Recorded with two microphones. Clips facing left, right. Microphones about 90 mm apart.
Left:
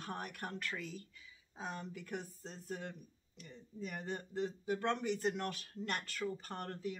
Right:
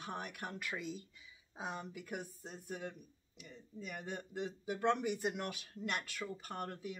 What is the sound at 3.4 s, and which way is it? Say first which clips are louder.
Speech: left 2 dB; 40° left (ahead or behind).